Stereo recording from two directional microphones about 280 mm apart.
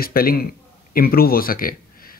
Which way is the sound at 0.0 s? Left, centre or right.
Left.